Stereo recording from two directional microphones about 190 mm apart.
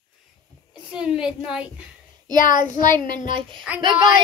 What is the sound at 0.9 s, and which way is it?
Speech, 5° right (ahead or behind).